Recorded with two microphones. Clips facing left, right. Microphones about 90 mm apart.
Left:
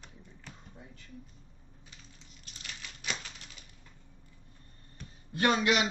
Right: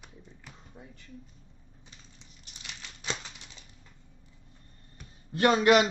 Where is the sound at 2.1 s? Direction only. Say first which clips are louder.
Even; 20° right (ahead or behind).